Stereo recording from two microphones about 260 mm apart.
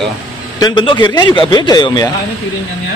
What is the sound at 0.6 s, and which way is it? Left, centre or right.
A man's voice, centre.